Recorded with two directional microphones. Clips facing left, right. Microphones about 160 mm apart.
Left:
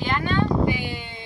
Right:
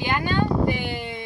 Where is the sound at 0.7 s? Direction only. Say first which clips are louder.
Right 2 dB; 55° right (ahead or behind).